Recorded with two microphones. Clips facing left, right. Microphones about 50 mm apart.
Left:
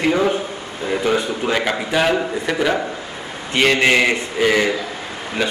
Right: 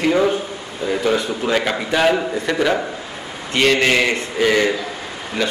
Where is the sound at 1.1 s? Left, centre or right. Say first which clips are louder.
Even; centre.